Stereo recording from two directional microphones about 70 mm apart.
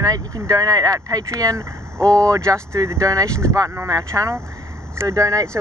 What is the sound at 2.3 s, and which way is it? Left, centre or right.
Speech, right.